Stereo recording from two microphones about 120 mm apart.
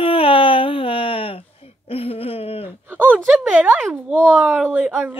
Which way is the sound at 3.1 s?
Centre (ahead or behind).